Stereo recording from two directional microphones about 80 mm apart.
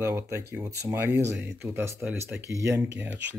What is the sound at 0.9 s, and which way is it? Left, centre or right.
Speech, right.